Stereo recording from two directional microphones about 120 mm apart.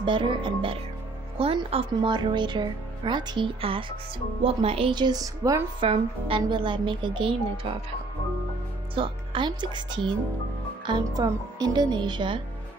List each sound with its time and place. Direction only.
0.0 s speech: 45° right (ahead or behind)
5.8 s speech: 45° right (ahead or behind)
8.9 s speech: 45° right (ahead or behind)